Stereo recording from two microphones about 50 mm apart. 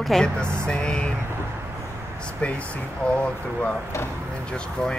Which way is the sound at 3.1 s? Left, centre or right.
Left.